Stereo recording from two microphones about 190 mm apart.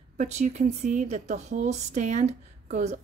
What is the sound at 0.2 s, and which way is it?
A woman's voice, 40° right (ahead or behind).